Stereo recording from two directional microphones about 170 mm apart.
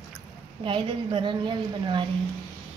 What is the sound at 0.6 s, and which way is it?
A woman's voice, 30° right (ahead or behind).